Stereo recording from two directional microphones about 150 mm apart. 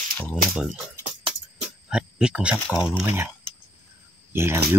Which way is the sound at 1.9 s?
5° right (ahead or behind).